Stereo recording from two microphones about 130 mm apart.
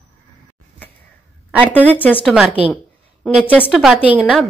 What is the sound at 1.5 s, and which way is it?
A woman's voice, 10° right (ahead or behind).